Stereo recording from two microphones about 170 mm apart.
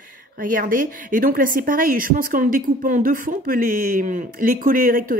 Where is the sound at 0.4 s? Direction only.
55° right (ahead or behind).